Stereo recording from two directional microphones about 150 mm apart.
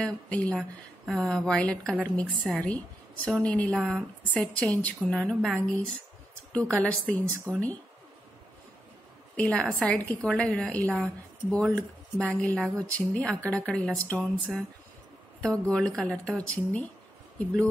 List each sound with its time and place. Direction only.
0.0 s a woman's voice: 10° left (ahead or behind)
9.4 s a woman's voice: 5° left (ahead or behind)